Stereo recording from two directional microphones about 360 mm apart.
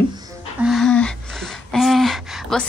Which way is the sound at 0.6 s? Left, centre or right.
Centre.